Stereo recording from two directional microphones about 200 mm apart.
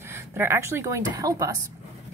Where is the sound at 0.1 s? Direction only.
15° right (ahead or behind).